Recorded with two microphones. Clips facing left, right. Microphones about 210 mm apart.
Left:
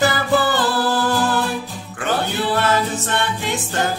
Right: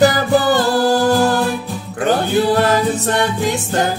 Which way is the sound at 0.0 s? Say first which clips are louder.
Right 5 dB; 40° right (ahead or behind).